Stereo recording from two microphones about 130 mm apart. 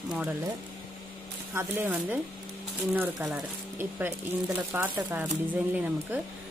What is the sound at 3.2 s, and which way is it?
Speech, 15° right (ahead or behind).